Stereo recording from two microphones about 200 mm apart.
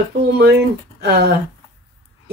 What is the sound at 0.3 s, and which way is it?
Speech, 55° right (ahead or behind).